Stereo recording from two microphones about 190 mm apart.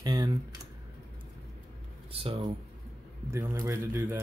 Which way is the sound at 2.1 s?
30° right (ahead or behind).